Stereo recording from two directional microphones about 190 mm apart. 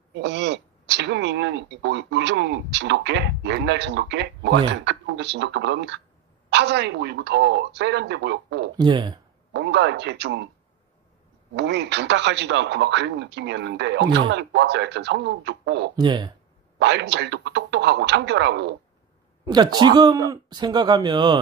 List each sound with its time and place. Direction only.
0.1 s speech: 65° right (ahead or behind)
8.7 s speech: 25° right (ahead or behind)
9.5 s speech: 65° right (ahead or behind)
11.5 s speech: 65° right (ahead or behind)
16.0 s speech: 25° right (ahead or behind)
16.7 s speech: 65° right (ahead or behind)
19.4 s speech: 20° right (ahead or behind)